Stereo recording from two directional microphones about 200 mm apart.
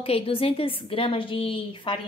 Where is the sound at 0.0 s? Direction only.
30° left (ahead or behind).